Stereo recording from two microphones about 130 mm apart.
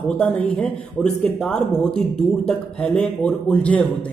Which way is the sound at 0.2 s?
10° left (ahead or behind).